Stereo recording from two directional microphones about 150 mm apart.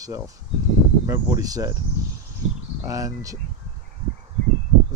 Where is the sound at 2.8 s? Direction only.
20° right (ahead or behind).